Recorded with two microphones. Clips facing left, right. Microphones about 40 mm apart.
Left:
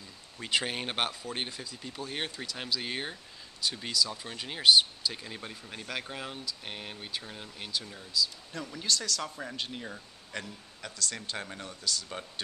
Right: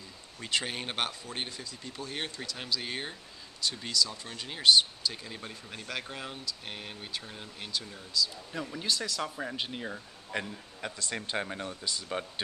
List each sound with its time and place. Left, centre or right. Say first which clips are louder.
0.4 s speech: left 2 dB; centre
8.5 s speech: even; centre
10.4 s speech: right 4 dB; right